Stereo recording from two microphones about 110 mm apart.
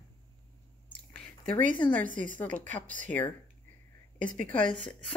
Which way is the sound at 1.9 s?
15° left (ahead or behind).